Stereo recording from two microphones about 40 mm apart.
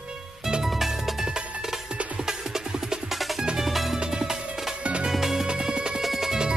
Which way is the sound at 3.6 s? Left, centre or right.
Centre.